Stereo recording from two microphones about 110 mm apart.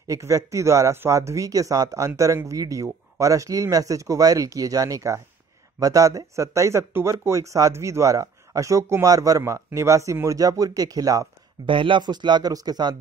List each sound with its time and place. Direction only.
0.0 s speech: 30° right (ahead or behind)
11.6 s speech: 50° right (ahead or behind)